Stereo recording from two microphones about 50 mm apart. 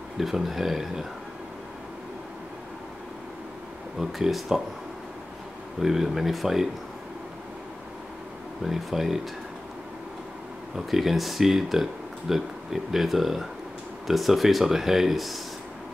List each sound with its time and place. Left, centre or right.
0.2 s speech: centre
4.0 s speech: centre
5.8 s speech: centre
8.6 s speech: centre
10.9 s speech: centre